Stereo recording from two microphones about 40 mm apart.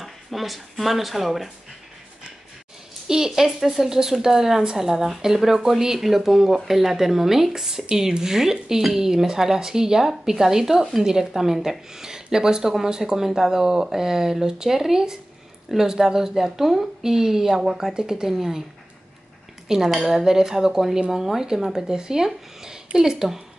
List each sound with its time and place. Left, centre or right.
0.0 s speech: centre
3.1 s speech: centre
17.9 s speech: centre
19.7 s speech: centre